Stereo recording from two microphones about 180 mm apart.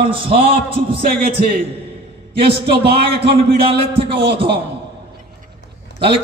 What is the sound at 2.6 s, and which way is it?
Speech, 65° right (ahead or behind).